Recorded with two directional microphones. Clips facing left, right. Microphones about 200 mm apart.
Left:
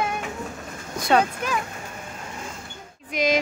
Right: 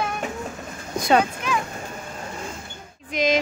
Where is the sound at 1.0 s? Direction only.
Centre (ahead or behind).